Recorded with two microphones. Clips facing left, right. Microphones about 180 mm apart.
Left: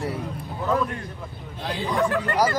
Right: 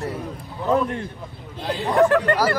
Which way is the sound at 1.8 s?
65° right (ahead or behind).